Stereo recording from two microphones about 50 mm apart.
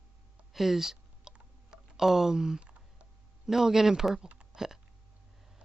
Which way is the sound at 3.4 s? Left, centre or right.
Centre.